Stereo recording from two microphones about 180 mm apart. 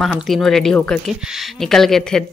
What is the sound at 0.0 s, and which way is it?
Speech, centre (ahead or behind).